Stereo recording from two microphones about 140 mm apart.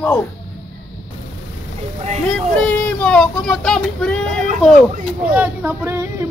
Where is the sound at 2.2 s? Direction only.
5° left (ahead or behind).